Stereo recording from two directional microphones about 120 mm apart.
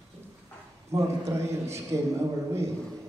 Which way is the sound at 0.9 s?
25° right (ahead or behind).